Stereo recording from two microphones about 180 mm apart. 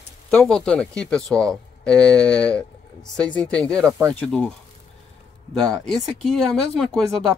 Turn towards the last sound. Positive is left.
turn(degrees=0)  # may be behind; listen again after turning